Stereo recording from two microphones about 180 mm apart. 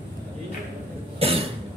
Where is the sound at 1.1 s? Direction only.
30° right (ahead or behind).